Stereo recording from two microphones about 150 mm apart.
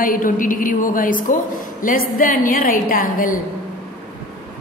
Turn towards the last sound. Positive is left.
turn(degrees=65)  # may be behind; listen again after turning